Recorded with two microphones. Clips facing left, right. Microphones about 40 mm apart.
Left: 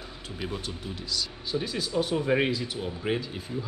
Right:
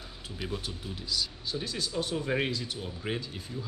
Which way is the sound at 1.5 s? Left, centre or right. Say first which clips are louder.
Left 7 dB; centre.